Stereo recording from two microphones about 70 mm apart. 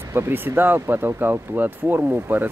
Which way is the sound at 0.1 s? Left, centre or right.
Right.